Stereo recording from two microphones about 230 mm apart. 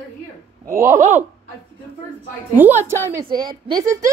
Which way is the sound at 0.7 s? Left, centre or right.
Centre.